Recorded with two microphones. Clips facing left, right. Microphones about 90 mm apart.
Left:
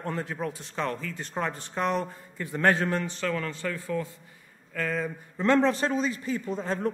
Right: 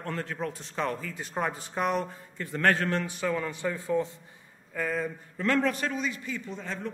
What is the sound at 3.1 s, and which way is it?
Speech, 10° right (ahead or behind).